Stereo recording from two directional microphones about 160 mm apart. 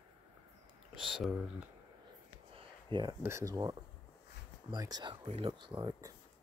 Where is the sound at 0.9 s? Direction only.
Centre (ahead or behind).